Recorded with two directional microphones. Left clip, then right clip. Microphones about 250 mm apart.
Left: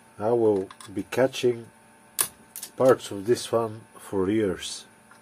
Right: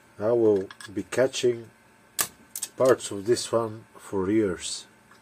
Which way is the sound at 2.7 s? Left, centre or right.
Centre.